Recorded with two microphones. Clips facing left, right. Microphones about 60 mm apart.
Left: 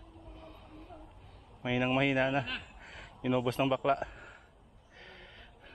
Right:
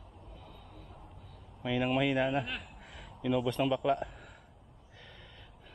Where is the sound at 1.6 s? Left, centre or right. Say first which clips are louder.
Even; centre.